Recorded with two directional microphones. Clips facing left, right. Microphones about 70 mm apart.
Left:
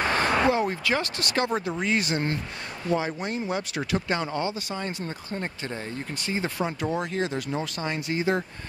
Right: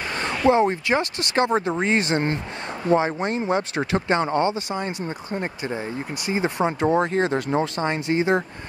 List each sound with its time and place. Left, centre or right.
0.5 s speech: right
4.6 s speech: right
6.9 s speech: right